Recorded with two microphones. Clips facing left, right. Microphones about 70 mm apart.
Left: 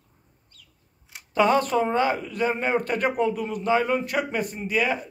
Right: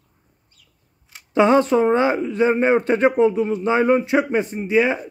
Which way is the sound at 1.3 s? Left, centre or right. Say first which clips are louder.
Right 5 dB; right.